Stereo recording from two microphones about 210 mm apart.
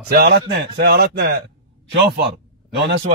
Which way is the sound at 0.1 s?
50° right (ahead or behind).